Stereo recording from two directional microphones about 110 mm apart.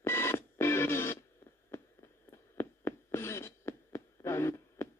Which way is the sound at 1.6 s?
25° left (ahead or behind).